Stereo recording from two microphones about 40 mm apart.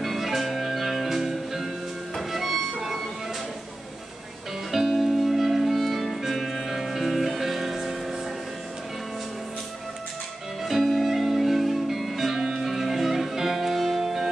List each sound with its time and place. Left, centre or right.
0.0 s music: centre
4.6 s music: centre
10.6 s music: centre
12.4 s music: centre
12.6 s music: centre